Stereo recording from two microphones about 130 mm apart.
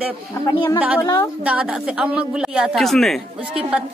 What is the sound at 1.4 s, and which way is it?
Speech, 5° right (ahead or behind).